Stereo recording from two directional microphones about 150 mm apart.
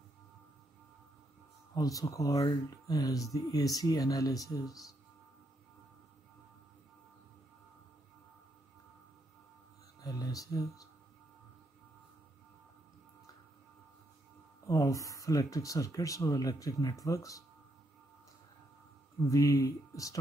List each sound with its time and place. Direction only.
1.8 s speech: 20° left (ahead or behind)
9.9 s speech: 25° left (ahead or behind)
14.7 s speech: 20° left (ahead or behind)
19.2 s speech: 20° left (ahead or behind)